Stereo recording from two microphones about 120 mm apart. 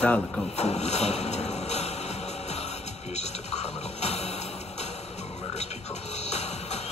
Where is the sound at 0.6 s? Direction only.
65° left (ahead or behind).